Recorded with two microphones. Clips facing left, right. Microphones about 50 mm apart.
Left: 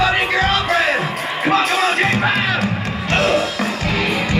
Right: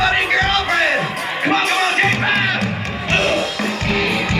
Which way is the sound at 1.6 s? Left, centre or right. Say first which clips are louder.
Even; right.